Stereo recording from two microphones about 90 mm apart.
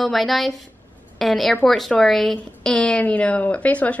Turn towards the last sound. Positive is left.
turn(degrees=15)  # may be behind; listen again after turning